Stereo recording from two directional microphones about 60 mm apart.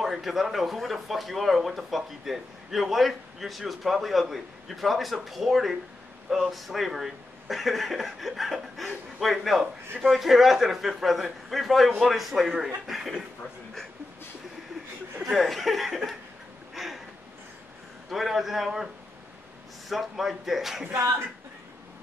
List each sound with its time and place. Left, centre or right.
0.0 s speech: centre
15.2 s speech: centre
16.7 s a sound: centre
18.1 s speech: centre
19.9 s speech: centre